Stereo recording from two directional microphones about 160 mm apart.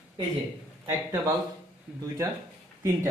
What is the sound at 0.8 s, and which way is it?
Speech, 20° right (ahead or behind).